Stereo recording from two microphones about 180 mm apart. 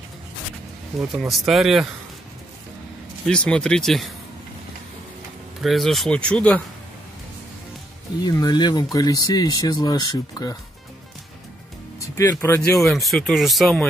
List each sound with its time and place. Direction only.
1.1 s speech: centre (ahead or behind)
3.3 s speech: 5° left (ahead or behind)
5.6 s speech: centre (ahead or behind)
8.2 s speech: 20° left (ahead or behind)
12.2 s speech: 15° left (ahead or behind)
12.6 s speech: centre (ahead or behind)